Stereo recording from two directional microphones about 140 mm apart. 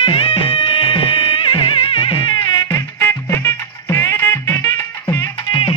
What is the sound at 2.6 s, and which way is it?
Music, 20° left (ahead or behind).